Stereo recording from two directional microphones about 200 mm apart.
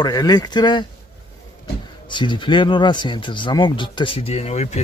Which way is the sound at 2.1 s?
25° left (ahead or behind).